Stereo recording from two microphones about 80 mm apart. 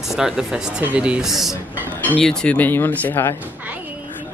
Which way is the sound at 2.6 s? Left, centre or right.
Left.